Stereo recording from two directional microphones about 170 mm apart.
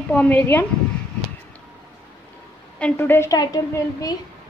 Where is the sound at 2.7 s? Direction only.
10° left (ahead or behind).